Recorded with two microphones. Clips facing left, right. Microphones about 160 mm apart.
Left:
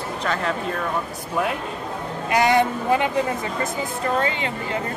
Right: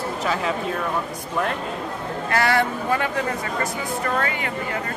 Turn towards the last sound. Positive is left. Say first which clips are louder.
# left 2 dB
turn(degrees=25)  # may be behind; listen again after turning